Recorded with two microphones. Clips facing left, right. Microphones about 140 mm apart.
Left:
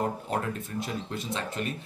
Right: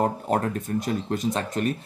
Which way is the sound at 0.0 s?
45° right (ahead or behind).